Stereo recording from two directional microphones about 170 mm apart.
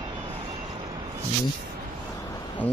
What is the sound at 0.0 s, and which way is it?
Vehicle, 30° right (ahead or behind).